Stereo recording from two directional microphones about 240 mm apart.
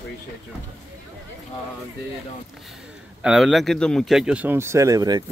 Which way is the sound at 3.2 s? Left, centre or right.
Centre.